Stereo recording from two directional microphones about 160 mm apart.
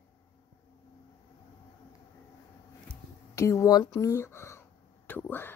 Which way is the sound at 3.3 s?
20° left (ahead or behind).